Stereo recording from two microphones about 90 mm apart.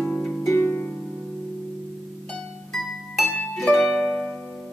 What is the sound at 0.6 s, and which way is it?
Harp, 20° left (ahead or behind).